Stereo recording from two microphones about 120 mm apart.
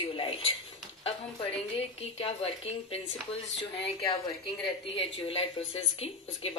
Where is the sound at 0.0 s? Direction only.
50° left (ahead or behind).